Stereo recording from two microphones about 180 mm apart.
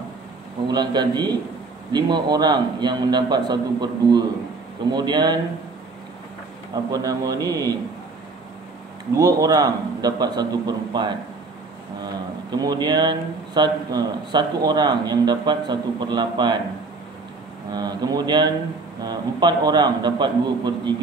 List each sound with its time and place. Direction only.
0.7 s a man's voice: 25° right (ahead or behind)
6.7 s a man's voice: 20° right (ahead or behind)
9.1 s a man's voice: 20° right (ahead or behind)
12.4 s a man's voice: 20° right (ahead or behind)
17.6 s a man's voice: 25° right (ahead or behind)